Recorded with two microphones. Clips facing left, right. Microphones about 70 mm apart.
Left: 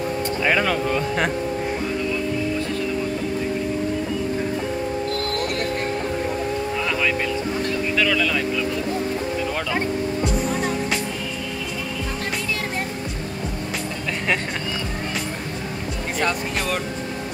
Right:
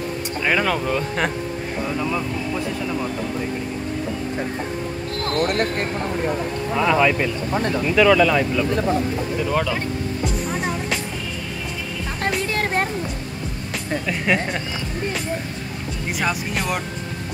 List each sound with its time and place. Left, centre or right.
0.4 s speech: centre
6.8 s music: centre
7.9 s speech: centre
9.5 s speech: centre
16.2 s speech: centre